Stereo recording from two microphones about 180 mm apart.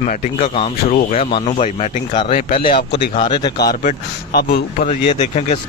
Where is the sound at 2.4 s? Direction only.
55° left (ahead or behind).